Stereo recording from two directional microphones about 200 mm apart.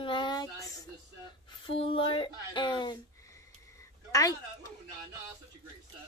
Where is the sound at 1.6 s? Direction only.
25° left (ahead or behind).